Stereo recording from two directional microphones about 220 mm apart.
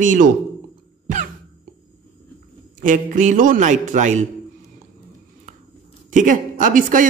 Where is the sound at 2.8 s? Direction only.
35° right (ahead or behind).